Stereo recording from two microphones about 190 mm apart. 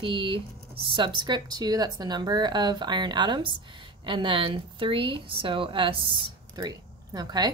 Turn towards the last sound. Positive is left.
turn(degrees=-20)  # may be behind; listen again after turning